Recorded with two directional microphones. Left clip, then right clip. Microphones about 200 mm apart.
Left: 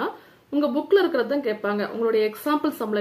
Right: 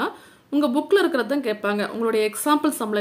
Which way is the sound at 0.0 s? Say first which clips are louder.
Right 2 dB; 30° right (ahead or behind).